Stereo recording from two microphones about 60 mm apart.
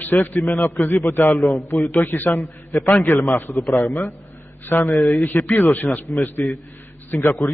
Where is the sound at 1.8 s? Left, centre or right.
Left.